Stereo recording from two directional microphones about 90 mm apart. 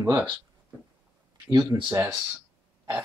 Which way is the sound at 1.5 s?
50° right (ahead or behind).